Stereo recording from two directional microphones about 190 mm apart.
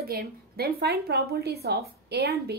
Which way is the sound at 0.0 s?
55° right (ahead or behind).